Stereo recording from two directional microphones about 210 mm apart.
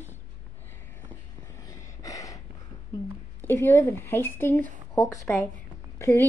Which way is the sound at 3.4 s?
10° left (ahead or behind).